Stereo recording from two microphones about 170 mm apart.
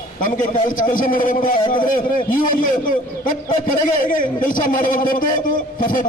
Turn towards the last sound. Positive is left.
turn(degrees=55)  # may be behind; listen again after turning